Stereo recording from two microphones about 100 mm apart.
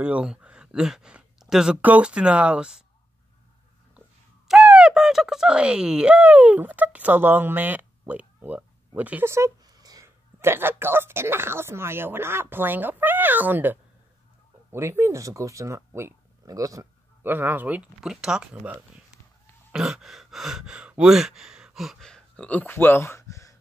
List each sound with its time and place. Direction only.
0.0 s speech: 10° right (ahead or behind)
4.5 s speech: 5° right (ahead or behind)
9.8 s a sound: 40° right (ahead or behind)
10.0 s speech: 25° right (ahead or behind)
17.2 s speech: 20° right (ahead or behind); by 23.5 s 30° left (ahead or behind)